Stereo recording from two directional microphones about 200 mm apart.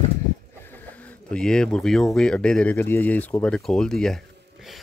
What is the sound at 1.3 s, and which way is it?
Speech, 5° left (ahead or behind).